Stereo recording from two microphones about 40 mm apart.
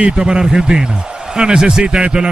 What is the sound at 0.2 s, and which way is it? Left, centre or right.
A man's voice, right.